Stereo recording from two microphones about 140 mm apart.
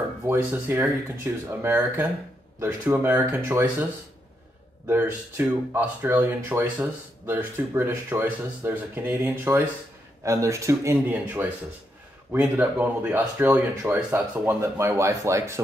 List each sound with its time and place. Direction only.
0.3 s speech: 15° right (ahead or behind)
4.8 s speech: 15° right (ahead or behind)